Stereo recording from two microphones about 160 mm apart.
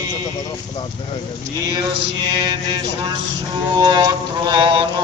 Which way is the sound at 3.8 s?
25° right (ahead or behind).